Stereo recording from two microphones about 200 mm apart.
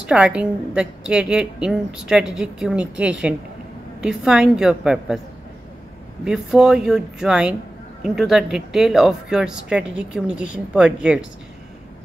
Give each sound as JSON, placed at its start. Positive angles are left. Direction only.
{"t": 0.0, "sound": "a woman's voice", "side_deg": -5}
{"t": 6.2, "sound": "a woman's voice", "side_deg": -5}